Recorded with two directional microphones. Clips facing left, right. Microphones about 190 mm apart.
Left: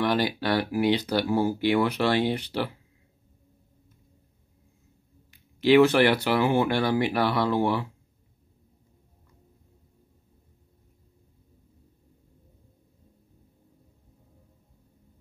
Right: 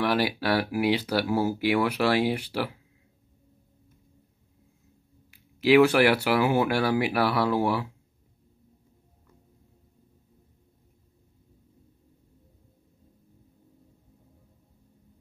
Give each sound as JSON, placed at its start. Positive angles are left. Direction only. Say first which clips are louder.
{"t": 0.0, "sound": "speech", "louder": "even", "side_deg": -5}
{"t": 5.3, "sound": "speech", "louder": "left 1 dB", "side_deg": -5}